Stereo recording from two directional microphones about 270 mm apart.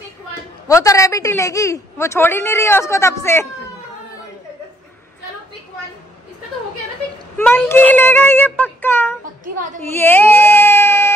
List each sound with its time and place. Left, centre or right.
0.7 s a man's voice: centre
7.3 s a man's voice: centre
9.4 s a woman's voice: right
9.9 s speech: centre